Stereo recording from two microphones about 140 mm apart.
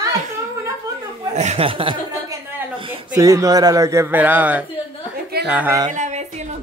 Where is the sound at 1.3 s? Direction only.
55° right (ahead or behind).